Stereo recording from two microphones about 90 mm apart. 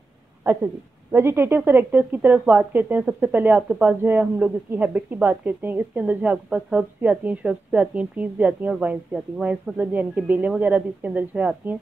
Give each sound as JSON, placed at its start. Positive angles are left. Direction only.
{"t": 0.4, "sound": "a woman's voice", "side_deg": -25}